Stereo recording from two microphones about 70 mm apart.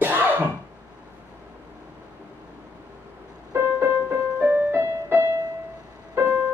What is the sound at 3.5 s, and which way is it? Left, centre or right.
Music, right.